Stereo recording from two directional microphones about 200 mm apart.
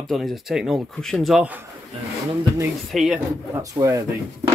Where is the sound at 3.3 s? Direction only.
15° right (ahead or behind).